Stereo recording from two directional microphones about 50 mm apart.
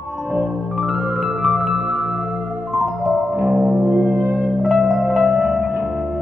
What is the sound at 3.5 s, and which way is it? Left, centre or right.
Music, centre.